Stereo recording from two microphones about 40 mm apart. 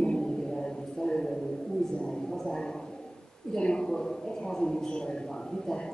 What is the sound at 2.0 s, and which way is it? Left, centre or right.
A man's voice, centre.